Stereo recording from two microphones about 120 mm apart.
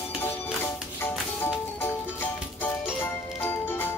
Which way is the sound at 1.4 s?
15° left (ahead or behind).